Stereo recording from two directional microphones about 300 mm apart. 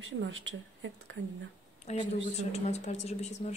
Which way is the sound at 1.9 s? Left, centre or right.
Left.